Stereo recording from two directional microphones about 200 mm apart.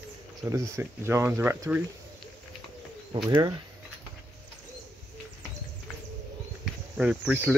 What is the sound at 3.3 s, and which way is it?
Speech, 20° right (ahead or behind).